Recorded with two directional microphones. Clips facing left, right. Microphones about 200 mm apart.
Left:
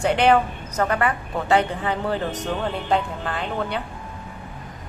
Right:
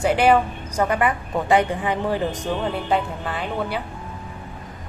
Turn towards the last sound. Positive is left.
turn(degrees=-5)  # may be behind; listen again after turning